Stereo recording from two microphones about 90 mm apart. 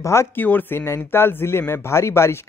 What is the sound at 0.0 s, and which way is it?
A man's voice, 30° left (ahead or behind).